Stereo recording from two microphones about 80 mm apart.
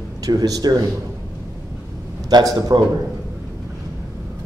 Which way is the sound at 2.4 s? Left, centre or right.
Right.